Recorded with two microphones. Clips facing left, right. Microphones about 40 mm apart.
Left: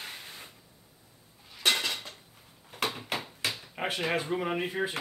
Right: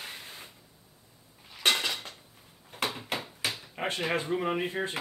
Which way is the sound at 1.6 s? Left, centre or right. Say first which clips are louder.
Right 1 dB; centre.